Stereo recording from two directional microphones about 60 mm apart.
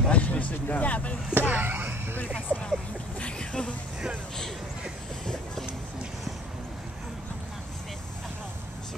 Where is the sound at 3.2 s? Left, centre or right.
Centre.